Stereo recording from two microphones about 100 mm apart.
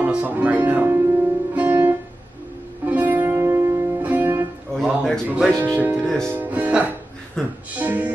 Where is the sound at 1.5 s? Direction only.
20° right (ahead or behind).